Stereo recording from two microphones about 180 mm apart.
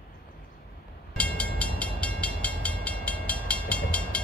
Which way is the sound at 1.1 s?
5° left (ahead or behind).